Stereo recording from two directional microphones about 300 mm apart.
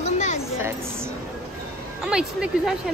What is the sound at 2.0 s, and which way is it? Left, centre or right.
Speech, centre.